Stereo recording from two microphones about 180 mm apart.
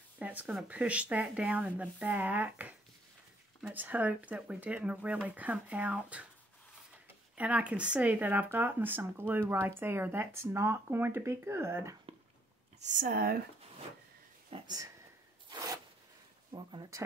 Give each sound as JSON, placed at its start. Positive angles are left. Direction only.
{"t": 0.2, "sound": "speech", "side_deg": -10}
{"t": 7.3, "sound": "speech", "side_deg": -10}
{"t": 12.8, "sound": "speech", "side_deg": -50}
{"t": 14.5, "sound": "speech", "side_deg": -25}
{"t": 16.5, "sound": "speech", "side_deg": -25}